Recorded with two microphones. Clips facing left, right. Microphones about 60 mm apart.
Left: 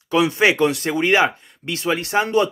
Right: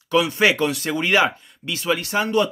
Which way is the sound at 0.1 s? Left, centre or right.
Left.